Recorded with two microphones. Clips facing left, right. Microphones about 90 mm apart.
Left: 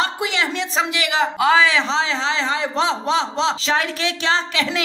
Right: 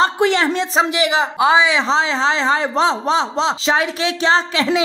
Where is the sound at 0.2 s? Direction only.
40° right (ahead or behind).